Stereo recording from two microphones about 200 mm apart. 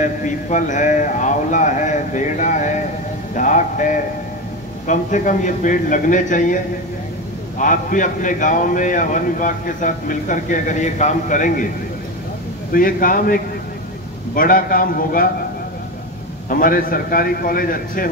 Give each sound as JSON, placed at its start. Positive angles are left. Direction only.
{"t": 0.0, "sound": "a man's voice", "side_deg": 40}
{"t": 3.3, "sound": "music", "side_deg": 40}
{"t": 4.8, "sound": "a man's voice", "side_deg": 40}
{"t": 12.7, "sound": "a man's voice", "side_deg": 45}
{"t": 16.4, "sound": "a man's voice", "side_deg": 45}